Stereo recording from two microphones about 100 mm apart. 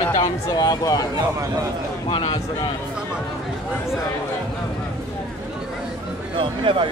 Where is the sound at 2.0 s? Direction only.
60° left (ahead or behind).